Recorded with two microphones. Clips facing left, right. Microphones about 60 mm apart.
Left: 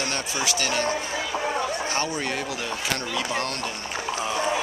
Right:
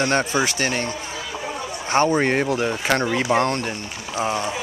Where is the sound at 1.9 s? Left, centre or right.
Right.